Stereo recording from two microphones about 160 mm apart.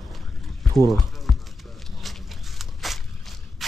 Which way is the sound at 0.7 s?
Centre (ahead or behind).